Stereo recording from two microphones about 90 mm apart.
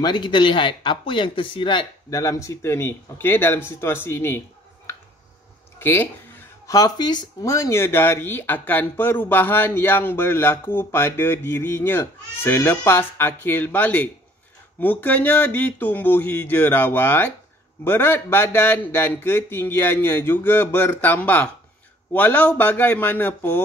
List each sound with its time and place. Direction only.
0.0 s speech: 60° left (ahead or behind)
2.0 s speech: 40° left (ahead or behind)
5.8 s a sound: 25° left (ahead or behind)
6.7 s speech: 45° left (ahead or behind)
7.4 s speech: 35° left (ahead or behind)